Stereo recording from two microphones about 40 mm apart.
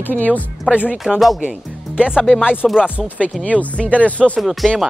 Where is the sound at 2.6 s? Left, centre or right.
Centre.